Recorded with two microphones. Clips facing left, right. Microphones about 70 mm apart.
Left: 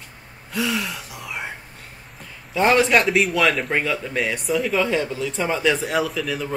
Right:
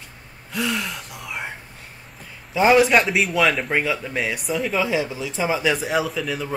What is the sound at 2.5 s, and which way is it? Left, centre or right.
A man's voice, centre.